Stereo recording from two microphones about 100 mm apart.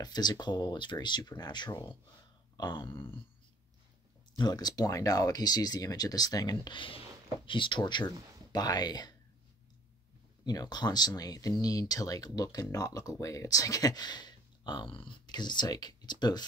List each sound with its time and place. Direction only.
0.0 s speech: 45° left (ahead or behind)
2.5 s a sound: 45° left (ahead or behind)
4.4 s speech: 45° left (ahead or behind)
10.4 s speech: 45° left (ahead or behind)